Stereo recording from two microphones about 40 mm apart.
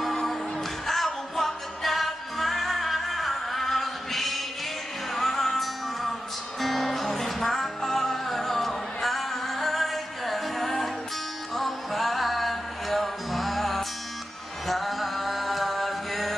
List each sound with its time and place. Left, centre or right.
0.8 s music: centre
14.7 s mantra: centre